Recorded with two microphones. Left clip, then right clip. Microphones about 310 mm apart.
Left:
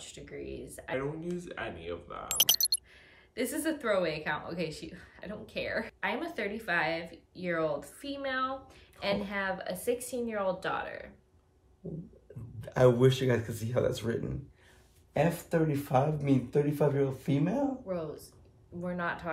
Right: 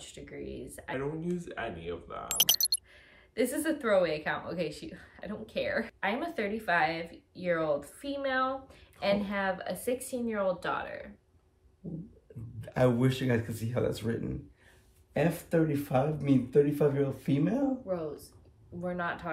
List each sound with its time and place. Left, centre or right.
0.0 s speech: centre
12.5 s speech: centre